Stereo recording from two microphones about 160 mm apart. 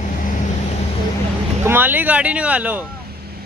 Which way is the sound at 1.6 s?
10° right (ahead or behind).